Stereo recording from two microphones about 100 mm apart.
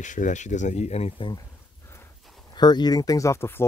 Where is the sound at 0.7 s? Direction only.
90° left.